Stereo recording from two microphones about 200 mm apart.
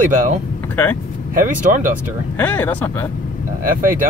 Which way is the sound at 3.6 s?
45° right (ahead or behind).